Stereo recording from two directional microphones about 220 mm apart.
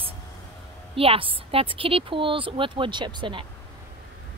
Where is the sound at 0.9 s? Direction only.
25° right (ahead or behind).